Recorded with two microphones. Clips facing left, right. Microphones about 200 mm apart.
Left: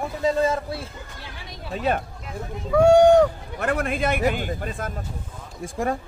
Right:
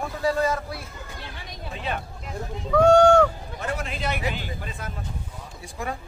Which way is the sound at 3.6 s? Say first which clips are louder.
Left 6 dB; 55° left (ahead or behind).